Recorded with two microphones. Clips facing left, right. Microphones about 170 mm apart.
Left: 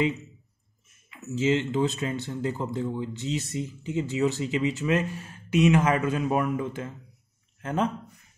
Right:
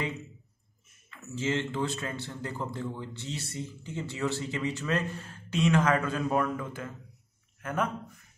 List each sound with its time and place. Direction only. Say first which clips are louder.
1.1 s speech: left 6 dB; 15° left (ahead or behind)